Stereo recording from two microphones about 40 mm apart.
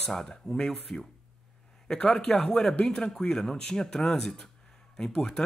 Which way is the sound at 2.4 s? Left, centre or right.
Centre.